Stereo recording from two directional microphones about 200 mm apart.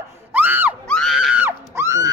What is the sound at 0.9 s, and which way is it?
Screaming, centre (ahead or behind).